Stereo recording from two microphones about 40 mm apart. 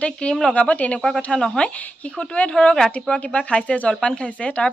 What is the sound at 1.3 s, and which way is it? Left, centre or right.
A woman's voice, left.